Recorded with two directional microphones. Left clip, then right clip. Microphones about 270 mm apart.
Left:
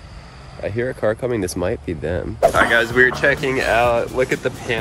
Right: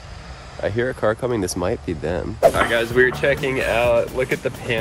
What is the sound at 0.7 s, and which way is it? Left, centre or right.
Speech, centre.